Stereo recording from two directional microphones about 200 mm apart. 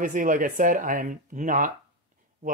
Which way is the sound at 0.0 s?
40° right (ahead or behind).